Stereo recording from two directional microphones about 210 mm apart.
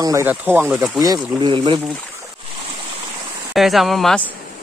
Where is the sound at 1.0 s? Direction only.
20° right (ahead or behind).